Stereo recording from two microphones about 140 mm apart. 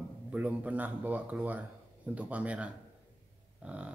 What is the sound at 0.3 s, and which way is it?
Speech, 10° right (ahead or behind).